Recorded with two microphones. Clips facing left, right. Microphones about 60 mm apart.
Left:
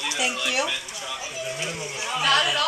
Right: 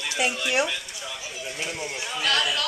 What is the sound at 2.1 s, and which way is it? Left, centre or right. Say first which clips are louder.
Speech: left 4 dB; left.